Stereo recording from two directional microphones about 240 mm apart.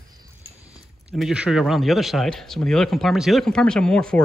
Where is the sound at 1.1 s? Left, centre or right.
Centre.